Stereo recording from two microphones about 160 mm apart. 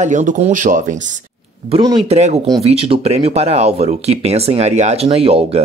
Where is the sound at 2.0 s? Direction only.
40° right (ahead or behind).